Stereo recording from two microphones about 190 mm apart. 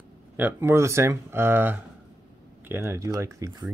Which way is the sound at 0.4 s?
10° right (ahead or behind).